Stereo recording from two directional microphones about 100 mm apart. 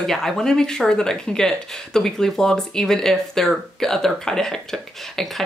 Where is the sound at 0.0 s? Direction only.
5° left (ahead or behind).